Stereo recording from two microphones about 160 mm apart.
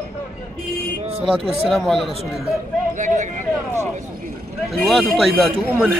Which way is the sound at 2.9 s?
50° right (ahead or behind).